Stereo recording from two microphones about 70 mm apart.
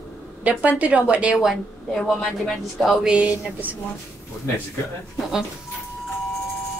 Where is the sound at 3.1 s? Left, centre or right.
Centre.